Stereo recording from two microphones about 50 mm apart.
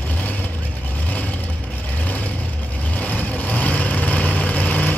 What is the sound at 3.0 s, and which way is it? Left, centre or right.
Vehicle, left.